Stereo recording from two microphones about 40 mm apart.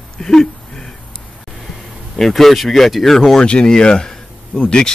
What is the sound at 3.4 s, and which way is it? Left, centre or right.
Speech, left.